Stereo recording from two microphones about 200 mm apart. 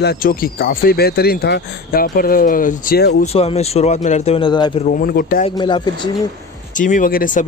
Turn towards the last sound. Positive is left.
turn(degrees=40)  # may be behind; listen again after turning